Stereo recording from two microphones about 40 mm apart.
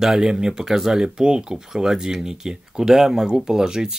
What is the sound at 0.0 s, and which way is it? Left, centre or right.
Speech, centre.